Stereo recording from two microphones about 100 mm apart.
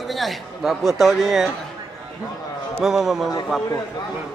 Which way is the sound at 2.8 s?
5° right (ahead or behind).